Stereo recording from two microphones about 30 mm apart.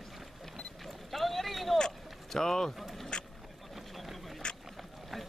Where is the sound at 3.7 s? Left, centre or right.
Centre.